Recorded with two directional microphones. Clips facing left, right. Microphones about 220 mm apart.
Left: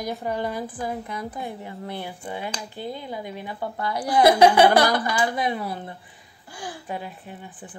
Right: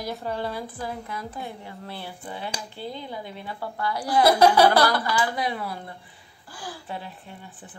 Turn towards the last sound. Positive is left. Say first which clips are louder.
# left 3 dB
turn(degrees=15)  # may be behind; listen again after turning